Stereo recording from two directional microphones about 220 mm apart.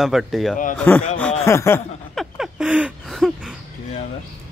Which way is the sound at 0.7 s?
5° left (ahead or behind).